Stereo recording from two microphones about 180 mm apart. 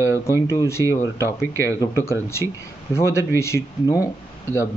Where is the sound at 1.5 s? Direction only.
15° right (ahead or behind).